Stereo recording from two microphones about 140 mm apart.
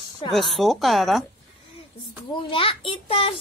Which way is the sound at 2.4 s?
40° left (ahead or behind).